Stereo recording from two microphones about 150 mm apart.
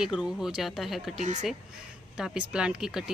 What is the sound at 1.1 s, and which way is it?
Speech, 50° right (ahead or behind).